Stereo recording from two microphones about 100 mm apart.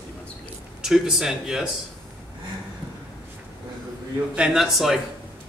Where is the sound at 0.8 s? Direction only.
5° right (ahead or behind).